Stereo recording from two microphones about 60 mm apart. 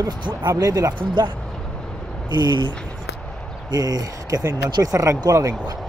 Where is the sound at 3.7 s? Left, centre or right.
Right.